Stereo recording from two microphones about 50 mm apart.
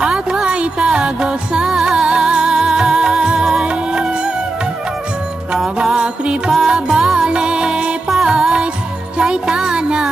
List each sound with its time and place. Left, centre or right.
0.0 s music: centre
5.8 s music: centre